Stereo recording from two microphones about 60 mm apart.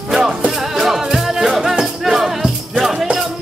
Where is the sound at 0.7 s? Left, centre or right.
Centre.